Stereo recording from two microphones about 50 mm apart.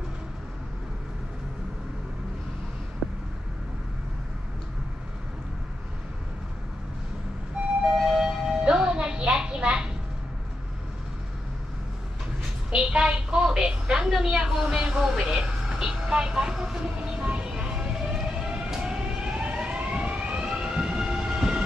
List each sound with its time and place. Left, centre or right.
7.6 s vehicle: right
8.0 s music: centre
12.7 s a sound: centre
14.8 s speech: centre
17.0 s vehicle: centre